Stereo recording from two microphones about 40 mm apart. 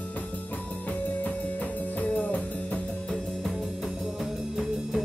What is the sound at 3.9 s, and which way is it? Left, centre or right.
Music, centre.